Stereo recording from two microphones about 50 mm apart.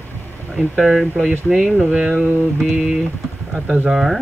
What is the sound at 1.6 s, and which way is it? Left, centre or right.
Speech, right.